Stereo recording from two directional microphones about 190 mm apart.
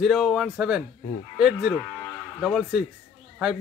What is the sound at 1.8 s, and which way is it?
Cattle, 5° left (ahead or behind).